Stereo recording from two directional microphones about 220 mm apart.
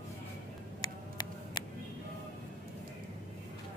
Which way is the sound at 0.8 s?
20° left (ahead or behind).